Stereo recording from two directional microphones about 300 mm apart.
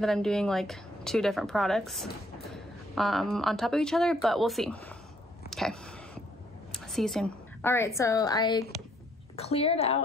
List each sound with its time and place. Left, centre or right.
0.0 s speech: centre
5.5 s a sound: centre
6.7 s a woman's voice: centre